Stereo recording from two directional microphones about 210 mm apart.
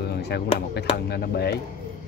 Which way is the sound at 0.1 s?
50° left (ahead or behind).